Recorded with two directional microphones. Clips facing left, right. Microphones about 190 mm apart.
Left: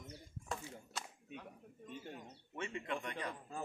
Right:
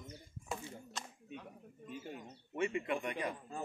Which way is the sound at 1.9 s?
5° right (ahead or behind).